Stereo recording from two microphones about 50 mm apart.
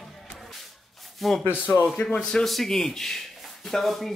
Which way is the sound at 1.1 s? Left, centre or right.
Centre.